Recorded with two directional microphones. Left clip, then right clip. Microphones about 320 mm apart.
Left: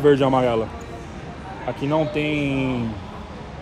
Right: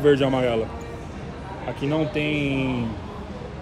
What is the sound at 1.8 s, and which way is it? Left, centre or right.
Speech, centre.